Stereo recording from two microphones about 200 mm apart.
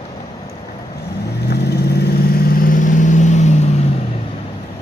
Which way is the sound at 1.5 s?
55° left (ahead or behind).